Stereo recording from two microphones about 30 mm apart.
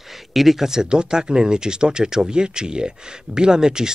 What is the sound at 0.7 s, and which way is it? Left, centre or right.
Speech, right.